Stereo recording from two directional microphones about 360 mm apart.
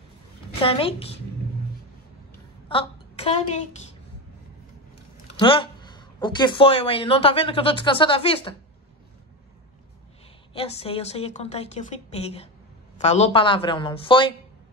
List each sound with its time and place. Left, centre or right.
0.6 s speech: centre
2.7 s a woman's voice: centre
5.3 s speech: centre
10.5 s speech: centre